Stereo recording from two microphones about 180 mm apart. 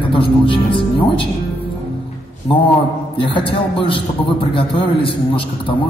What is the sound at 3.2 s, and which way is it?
Speech, 30° left (ahead or behind).